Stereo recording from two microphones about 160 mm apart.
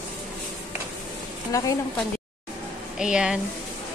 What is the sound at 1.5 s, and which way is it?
Speech, 20° left (ahead or behind).